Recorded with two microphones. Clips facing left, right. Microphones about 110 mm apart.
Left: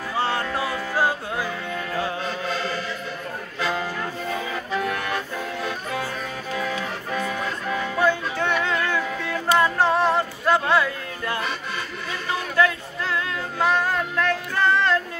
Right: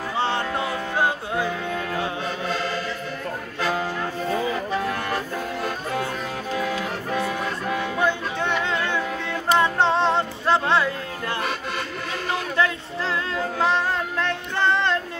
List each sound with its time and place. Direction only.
0.2 s music: 25° right (ahead or behind)
3.6 s music: 20° right (ahead or behind)
7.7 s music: 20° right (ahead or behind)
12.5 s music: 25° right (ahead or behind)